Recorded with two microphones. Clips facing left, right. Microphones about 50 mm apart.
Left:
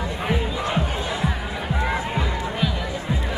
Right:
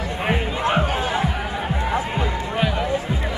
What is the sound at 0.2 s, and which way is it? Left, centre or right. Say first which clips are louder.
Crowd: right 4 dB; right.